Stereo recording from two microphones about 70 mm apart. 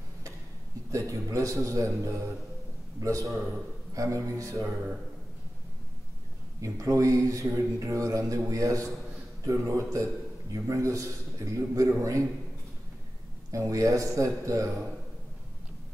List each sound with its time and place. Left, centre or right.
0.9 s a man's voice: right
6.6 s speech: right
13.5 s speech: right